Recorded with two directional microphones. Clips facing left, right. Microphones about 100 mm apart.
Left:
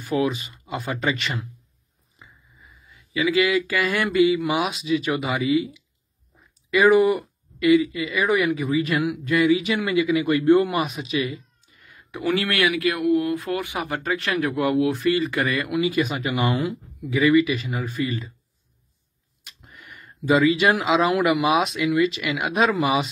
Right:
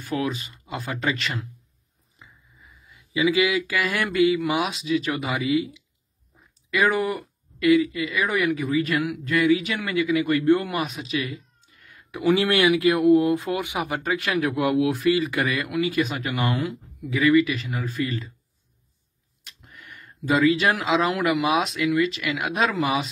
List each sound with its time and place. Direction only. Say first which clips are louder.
0.0 s speech: left 4 dB; 10° left (ahead or behind)
0.7 s speech: left 2 dB; centre (ahead or behind)
3.1 s speech: even; 15° right (ahead or behind)
3.5 s speech: left 2 dB; 5° right (ahead or behind); by 9.4 s 15° left (ahead or behind)
9.4 s speech: left 1 dB; 5° left (ahead or behind)
9.8 s speech: left 2 dB; 15° left (ahead or behind)
11.0 s speech: left 3 dB; 5° left (ahead or behind)
11.9 s a sound: right 3 dB; 5° right (ahead or behind)
12.4 s speech: right 1 dB; 20° right (ahead or behind); by 18.3 s 15° left (ahead or behind)
19.4 s a sound: even; 20° left (ahead or behind)
20.3 s speech: left 1 dB; 5° left (ahead or behind)